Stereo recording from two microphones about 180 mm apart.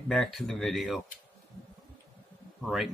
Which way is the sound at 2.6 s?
Centre (ahead or behind).